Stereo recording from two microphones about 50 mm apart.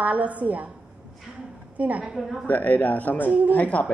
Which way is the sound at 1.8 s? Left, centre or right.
Right.